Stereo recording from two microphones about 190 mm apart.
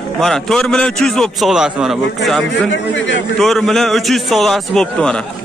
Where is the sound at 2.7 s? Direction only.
75° left (ahead or behind).